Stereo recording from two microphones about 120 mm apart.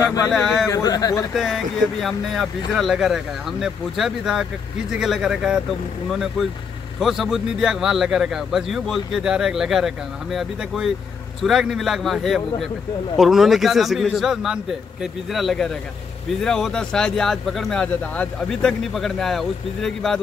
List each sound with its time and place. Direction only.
0.0 s a man's voice: 30° left (ahead or behind)
0.3 s a man's voice: centre (ahead or behind)
0.7 s speech: 30° left (ahead or behind)
1.3 s a man's voice: centre (ahead or behind)
7.0 s a man's voice: centre (ahead or behind)